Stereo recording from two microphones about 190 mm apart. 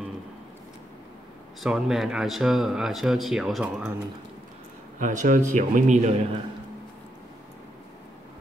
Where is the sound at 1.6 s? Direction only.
Centre (ahead or behind).